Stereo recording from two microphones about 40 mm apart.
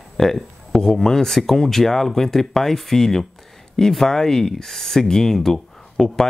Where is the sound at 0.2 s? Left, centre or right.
Centre.